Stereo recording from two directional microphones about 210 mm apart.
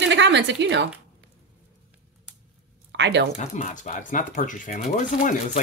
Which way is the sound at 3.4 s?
35° left (ahead or behind).